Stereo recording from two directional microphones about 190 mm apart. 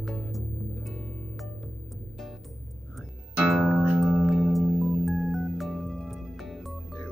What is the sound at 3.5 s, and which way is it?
Music, 5° right (ahead or behind).